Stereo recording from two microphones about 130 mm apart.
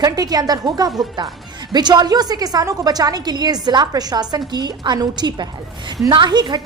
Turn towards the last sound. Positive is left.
turn(degrees=-35)  # may be behind; listen again after turning